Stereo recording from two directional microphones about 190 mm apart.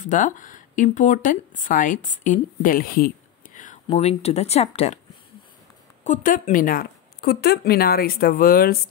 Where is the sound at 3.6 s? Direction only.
40° left (ahead or behind).